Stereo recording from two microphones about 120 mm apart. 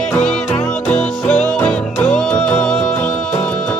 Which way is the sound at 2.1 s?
5° left (ahead or behind).